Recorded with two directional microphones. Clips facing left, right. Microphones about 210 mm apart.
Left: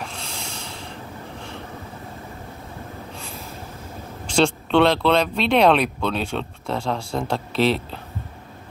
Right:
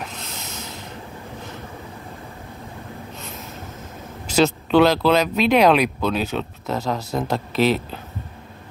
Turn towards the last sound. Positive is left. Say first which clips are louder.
# right 1 dB
turn(degrees=-5)  # may be behind; listen again after turning